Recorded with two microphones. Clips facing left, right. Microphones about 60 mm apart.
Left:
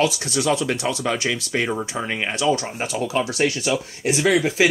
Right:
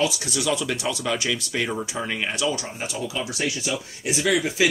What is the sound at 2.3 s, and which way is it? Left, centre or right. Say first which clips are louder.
Speech: left 5 dB; left.